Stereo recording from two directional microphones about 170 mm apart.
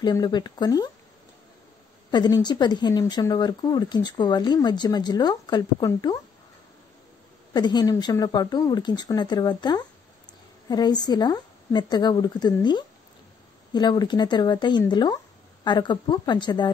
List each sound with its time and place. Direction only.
0.0 s speech: 25° left (ahead or behind)
2.0 s speech: 25° left (ahead or behind)
7.5 s speech: 25° left (ahead or behind)